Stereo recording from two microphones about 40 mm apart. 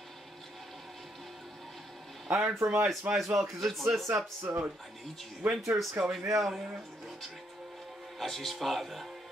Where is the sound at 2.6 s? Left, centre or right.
Right.